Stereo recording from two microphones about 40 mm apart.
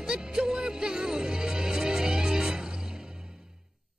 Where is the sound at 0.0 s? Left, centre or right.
Centre.